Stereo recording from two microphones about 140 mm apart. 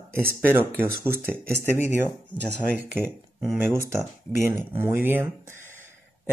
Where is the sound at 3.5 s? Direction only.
15° right (ahead or behind).